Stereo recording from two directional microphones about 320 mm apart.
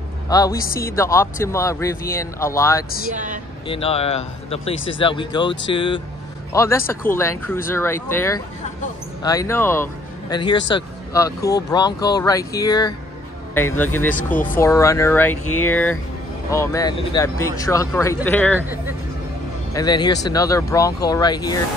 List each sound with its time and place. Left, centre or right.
0.3 s speech: centre
0.7 s a woman's voice: left
0.9 s speech: centre
15.4 s speech: left
16.4 s speech: centre
18.6 s speech: centre
19.7 s speech: centre